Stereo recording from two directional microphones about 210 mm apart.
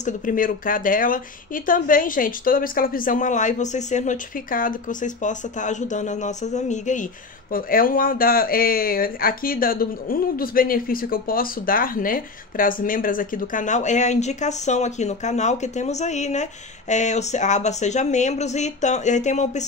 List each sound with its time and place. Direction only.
0.0 s speech: 40° left (ahead or behind)